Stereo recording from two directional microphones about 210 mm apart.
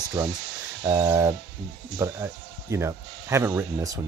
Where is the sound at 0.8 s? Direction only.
15° right (ahead or behind).